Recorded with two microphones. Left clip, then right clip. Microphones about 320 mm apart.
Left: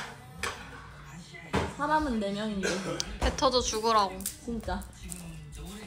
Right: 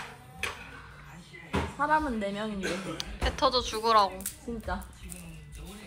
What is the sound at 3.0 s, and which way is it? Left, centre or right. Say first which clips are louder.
Speech: right 2 dB; centre.